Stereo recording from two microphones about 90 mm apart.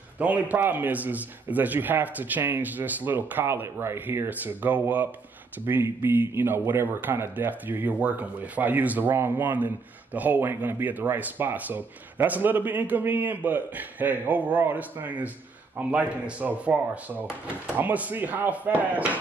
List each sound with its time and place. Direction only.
0.2 s speech: 15° right (ahead or behind)
5.7 s a man's voice: 30° right (ahead or behind)